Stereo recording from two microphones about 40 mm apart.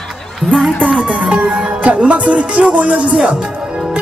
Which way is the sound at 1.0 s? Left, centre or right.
Right.